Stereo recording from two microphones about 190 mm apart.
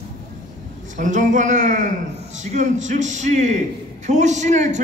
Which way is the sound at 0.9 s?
40° right (ahead or behind).